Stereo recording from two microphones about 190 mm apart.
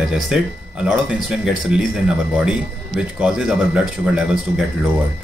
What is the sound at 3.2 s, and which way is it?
Speech, 5° right (ahead or behind).